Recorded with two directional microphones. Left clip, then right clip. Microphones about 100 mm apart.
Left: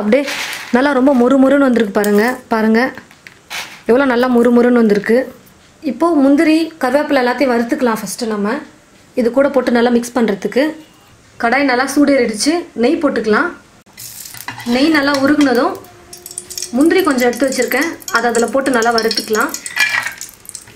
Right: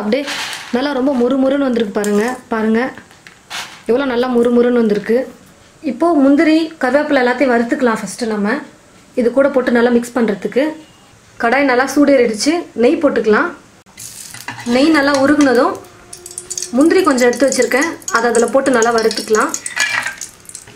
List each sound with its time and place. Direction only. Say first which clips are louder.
0.2 s speech: left 2 dB; 5° right (ahead or behind)
0.7 s speech: left 4 dB; 40° left (ahead or behind)
3.8 s speech: left 3 dB; 35° left (ahead or behind)
5.9 s a woman's voice: even; 20° left (ahead or behind)
9.1 s speech: even; 25° left (ahead or behind)
11.3 s a woman's voice: right 1 dB; 5° right (ahead or behind)
16.7 s speech: right 1 dB; 20° right (ahead or behind)
18.9 s dishes: right 1 dB; 10° right (ahead or behind)